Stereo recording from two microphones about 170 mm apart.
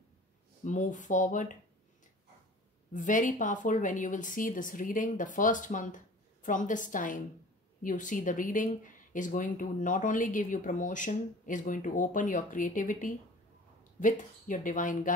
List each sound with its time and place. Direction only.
0.7 s speech: 50° left (ahead or behind)
2.9 s speech: 50° left (ahead or behind)